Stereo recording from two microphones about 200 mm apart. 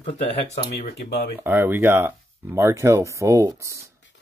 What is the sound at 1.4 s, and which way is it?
Speech, 10° right (ahead or behind).